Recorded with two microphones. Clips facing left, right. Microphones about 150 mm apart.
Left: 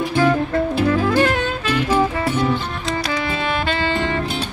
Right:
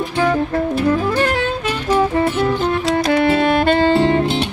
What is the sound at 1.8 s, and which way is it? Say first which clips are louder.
Music: right 1 dB; 10° left (ahead or behind).